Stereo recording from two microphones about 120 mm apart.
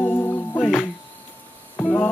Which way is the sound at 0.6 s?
Centre (ahead or behind).